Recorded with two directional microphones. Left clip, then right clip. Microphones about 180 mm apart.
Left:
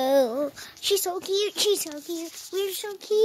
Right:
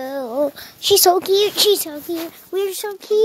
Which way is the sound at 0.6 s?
10° right (ahead or behind).